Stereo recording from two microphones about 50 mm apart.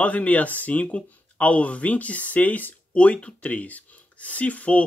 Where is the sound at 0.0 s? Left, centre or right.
Left.